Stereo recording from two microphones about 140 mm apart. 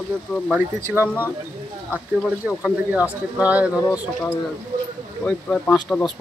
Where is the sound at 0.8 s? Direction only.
15° right (ahead or behind).